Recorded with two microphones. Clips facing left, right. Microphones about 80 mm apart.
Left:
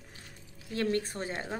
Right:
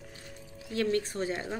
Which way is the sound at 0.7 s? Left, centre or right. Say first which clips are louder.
Right 2 dB; left.